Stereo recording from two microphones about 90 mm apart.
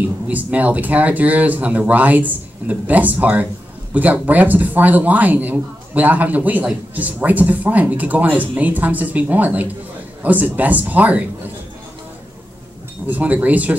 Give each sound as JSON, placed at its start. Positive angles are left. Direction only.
{"t": 0.3, "sound": "speech", "side_deg": -20}
{"t": 13.1, "sound": "speech", "side_deg": -20}